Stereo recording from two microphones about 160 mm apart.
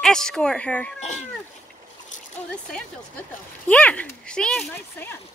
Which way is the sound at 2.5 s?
5° left (ahead or behind).